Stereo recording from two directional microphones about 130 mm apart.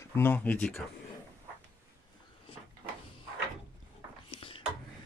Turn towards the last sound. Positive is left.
turn(degrees=40)  # may be behind; listen again after turning